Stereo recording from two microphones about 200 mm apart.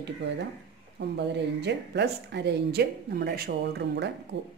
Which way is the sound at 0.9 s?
60° right (ahead or behind).